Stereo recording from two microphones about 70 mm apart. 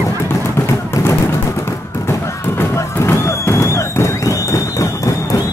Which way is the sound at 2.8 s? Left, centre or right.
Left.